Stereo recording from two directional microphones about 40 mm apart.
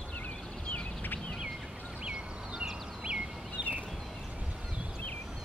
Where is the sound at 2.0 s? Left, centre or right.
Right.